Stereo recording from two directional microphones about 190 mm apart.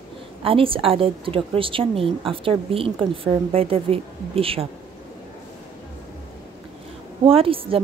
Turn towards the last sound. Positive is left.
turn(degrees=-30)  # may be behind; listen again after turning